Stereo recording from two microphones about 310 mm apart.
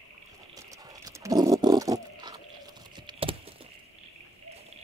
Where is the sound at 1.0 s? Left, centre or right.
Centre.